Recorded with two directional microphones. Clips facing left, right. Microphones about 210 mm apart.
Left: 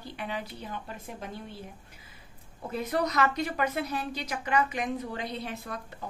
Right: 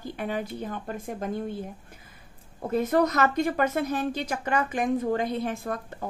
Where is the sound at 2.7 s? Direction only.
50° right (ahead or behind).